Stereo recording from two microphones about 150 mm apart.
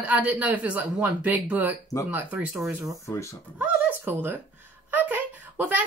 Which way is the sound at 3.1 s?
20° left (ahead or behind).